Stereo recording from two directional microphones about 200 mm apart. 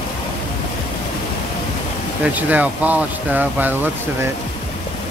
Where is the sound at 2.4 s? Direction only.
10° right (ahead or behind).